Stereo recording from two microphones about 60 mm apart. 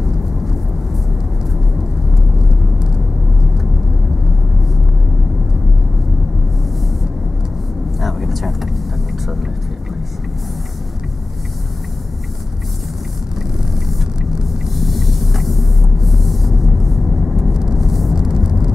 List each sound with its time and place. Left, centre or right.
8.0 s vehicle: centre
13.8 s vehicle: centre